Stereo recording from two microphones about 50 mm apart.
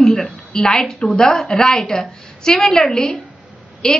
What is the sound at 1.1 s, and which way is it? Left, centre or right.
A woman's voice, centre.